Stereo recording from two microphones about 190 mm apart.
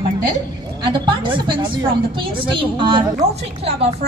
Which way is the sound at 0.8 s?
25° right (ahead or behind).